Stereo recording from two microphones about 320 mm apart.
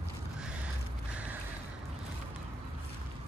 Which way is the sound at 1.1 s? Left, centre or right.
Centre.